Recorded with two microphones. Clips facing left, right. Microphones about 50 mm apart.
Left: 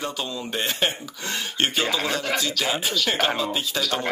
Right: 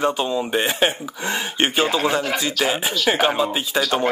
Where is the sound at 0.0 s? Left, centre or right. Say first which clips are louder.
Right 9 dB; right.